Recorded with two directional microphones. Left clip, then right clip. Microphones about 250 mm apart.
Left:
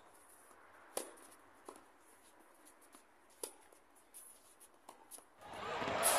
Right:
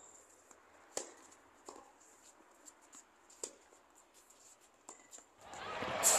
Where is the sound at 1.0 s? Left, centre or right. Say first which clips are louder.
Even; left.